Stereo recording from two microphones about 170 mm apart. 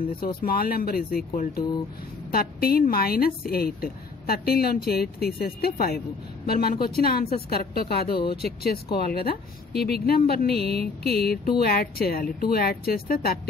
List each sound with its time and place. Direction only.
0.4 s a woman's voice: 60° left (ahead or behind)